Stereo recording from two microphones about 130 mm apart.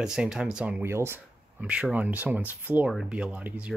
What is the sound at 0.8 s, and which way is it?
Speech, 20° right (ahead or behind).